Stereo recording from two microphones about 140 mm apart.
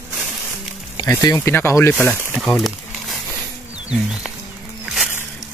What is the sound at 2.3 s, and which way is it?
Crumpling, centre (ahead or behind).